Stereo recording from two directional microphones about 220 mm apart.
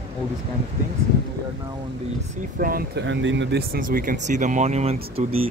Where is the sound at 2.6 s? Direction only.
45° right (ahead or behind); by 5.5 s 25° right (ahead or behind).